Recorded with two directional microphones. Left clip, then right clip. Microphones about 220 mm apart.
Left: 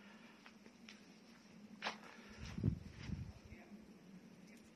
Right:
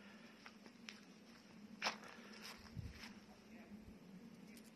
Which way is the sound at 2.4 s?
50° right (ahead or behind).